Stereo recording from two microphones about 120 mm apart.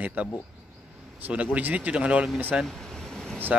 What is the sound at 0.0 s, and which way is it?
Speech, 10° right (ahead or behind).